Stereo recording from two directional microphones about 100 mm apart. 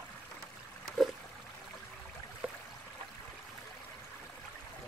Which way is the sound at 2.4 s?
10° right (ahead or behind).